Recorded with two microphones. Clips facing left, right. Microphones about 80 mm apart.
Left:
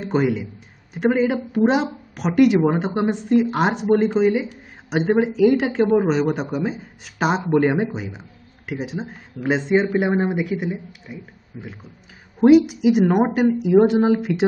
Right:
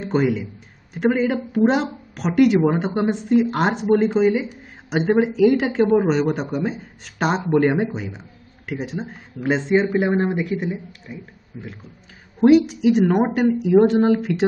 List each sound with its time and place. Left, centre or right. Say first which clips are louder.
0.0 s speech: even; centre